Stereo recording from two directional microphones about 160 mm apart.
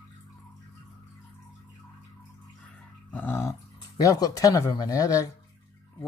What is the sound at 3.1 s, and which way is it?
Dog, 10° left (ahead or behind).